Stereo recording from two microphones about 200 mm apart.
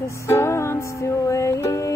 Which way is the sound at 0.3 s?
15° left (ahead or behind).